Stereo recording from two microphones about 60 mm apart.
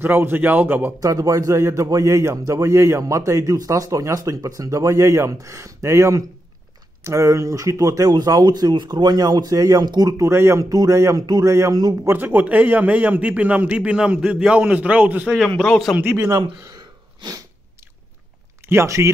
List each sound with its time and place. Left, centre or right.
0.0 s a man's voice: right
0.9 s speech: right
3.0 s speech: right
10.2 s speech: right
10.6 s speech: right
11.1 s a man's voice: right
12.1 s a man's voice: right
15.3 s speech: centre
16.0 s a man's voice: right
16.3 s speech: right
18.7 s speech: right